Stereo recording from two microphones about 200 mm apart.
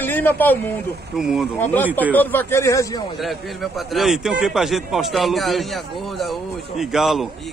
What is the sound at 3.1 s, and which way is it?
A man's voice, centre (ahead or behind).